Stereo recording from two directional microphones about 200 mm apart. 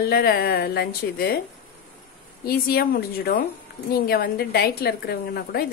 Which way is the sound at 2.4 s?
50° left (ahead or behind).